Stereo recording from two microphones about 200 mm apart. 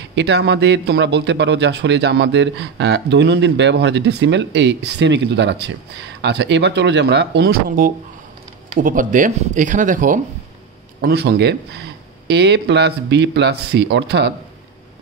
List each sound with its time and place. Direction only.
0.1 s a man's voice: 60° right (ahead or behind); by 10.2 s 40° right (ahead or behind)
11.0 s a man's voice: 55° right (ahead or behind)